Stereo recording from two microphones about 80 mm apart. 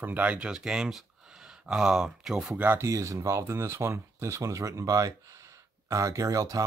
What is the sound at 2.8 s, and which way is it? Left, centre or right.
Speech, right.